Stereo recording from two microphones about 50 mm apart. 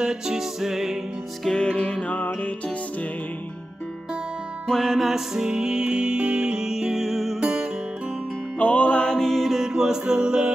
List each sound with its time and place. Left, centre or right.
0.0 s music: centre
1.4 s music: centre
1.8 s music: left
4.6 s music: centre
7.3 s music: centre
8.5 s music: left
9.1 s music: centre